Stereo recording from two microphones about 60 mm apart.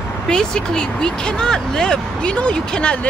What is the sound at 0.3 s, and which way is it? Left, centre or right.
Speech, centre.